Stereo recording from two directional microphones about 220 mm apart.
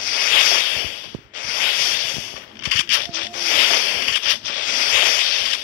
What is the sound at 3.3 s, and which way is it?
Music, 40° left (ahead or behind).